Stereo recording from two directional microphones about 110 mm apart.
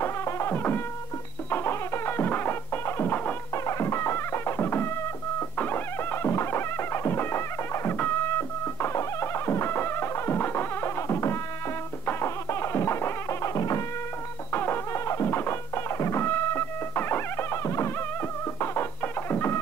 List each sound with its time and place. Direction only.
0.0 s music: 25° left (ahead or behind)